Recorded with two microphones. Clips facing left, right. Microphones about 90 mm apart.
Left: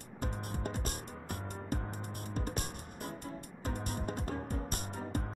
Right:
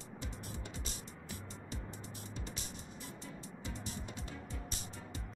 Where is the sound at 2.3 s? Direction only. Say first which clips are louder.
Left 11 dB; 55° left (ahead or behind).